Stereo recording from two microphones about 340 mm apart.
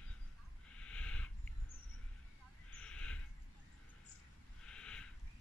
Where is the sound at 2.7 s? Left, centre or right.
Centre.